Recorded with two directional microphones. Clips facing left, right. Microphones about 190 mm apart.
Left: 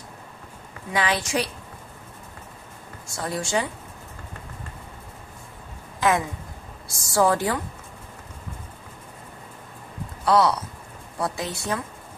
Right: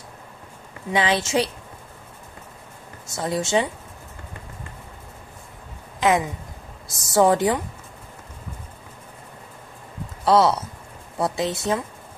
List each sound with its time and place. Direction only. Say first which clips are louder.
0.9 s speech: right 3 dB; 25° right (ahead or behind)
3.1 s speech: right 4 dB; 20° right (ahead or behind)
5.9 s a sound: right 2 dB; 20° right (ahead or behind)
6.9 s speech: right 3 dB; 20° right (ahead or behind)
10.2 s speech: right 2 dB; 25° right (ahead or behind)